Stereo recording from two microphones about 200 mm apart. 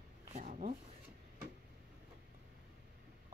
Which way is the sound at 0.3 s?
40° right (ahead or behind).